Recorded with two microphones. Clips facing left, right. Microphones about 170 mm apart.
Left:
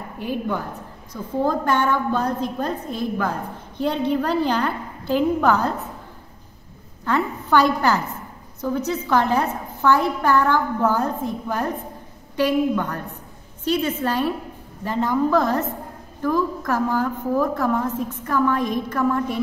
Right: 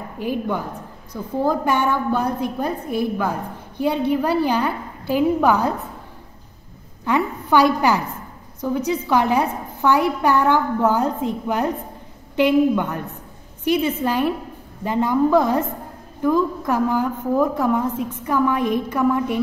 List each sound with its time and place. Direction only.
0.2 s a woman's voice: 15° right (ahead or behind)
7.1 s a woman's voice: 15° right (ahead or behind)